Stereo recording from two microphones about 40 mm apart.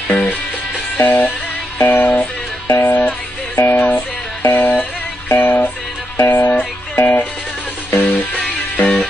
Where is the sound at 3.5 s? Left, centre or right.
Left.